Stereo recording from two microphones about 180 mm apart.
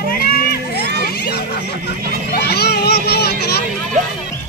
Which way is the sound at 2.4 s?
65° left (ahead or behind).